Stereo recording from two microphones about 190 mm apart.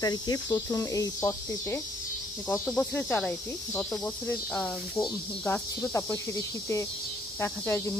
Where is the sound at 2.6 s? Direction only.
5° left (ahead or behind).